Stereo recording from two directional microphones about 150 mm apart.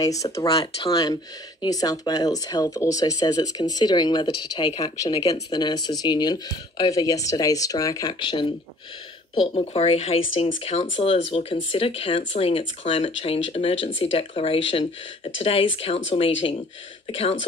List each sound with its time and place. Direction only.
0.0 s speech: 20° left (ahead or behind); by 17.4 s 40° left (ahead or behind)